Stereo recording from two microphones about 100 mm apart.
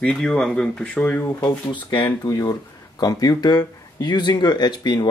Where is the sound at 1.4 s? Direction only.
50° left (ahead or behind).